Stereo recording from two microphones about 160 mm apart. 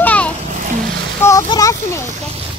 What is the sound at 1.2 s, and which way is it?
Speech, 20° left (ahead or behind).